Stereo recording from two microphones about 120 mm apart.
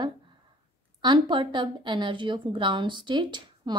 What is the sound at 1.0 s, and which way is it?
A woman's voice, 40° right (ahead or behind).